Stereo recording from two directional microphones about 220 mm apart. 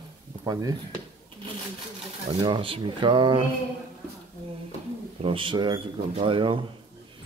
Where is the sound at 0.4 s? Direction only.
15° right (ahead or behind).